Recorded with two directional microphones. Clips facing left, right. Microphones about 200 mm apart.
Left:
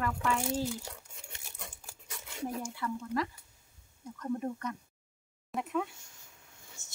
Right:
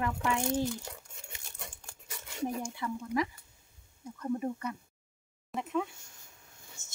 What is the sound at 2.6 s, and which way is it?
A woman's voice, 15° right (ahead or behind).